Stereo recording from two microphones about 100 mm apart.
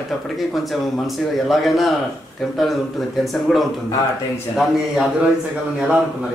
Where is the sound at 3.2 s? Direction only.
Centre (ahead or behind).